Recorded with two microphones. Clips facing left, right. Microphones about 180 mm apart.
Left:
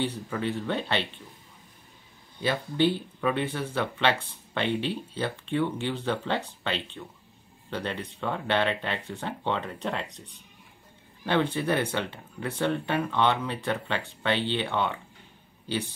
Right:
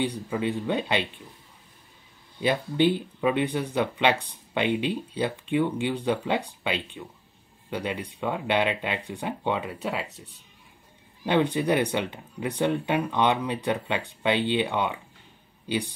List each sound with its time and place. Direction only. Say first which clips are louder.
0.0 s speech: right 2 dB; 15° right (ahead or behind)
2.4 s speech: right 2 dB; 15° right (ahead or behind)